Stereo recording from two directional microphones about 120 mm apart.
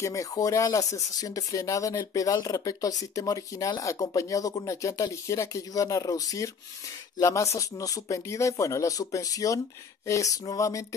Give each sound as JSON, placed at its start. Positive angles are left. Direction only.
{"t": 0.0, "sound": "speech", "side_deg": 25}